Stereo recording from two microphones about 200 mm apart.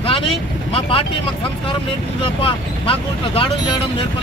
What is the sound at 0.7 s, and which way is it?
Speech, 30° left (ahead or behind).